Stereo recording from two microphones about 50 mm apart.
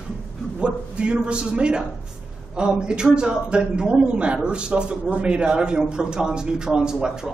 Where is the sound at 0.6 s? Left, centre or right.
Right.